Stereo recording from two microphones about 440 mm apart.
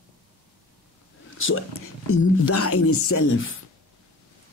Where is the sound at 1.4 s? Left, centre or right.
Left.